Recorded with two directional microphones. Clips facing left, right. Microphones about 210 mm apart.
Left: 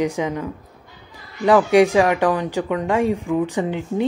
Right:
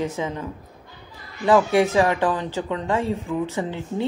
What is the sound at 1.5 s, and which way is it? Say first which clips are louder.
A woman's voice: left 4 dB; 15° left (ahead or behind).